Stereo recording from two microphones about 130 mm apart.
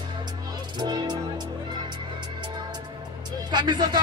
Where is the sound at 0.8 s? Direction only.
35° right (ahead or behind).